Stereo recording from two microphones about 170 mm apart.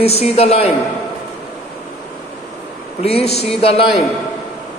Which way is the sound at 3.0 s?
35° left (ahead or behind).